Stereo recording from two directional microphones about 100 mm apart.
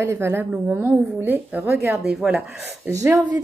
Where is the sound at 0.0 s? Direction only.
25° right (ahead or behind); by 2.6 s 10° right (ahead or behind).